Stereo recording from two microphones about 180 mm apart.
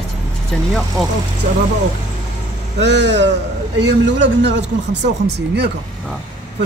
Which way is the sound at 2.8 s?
80° right.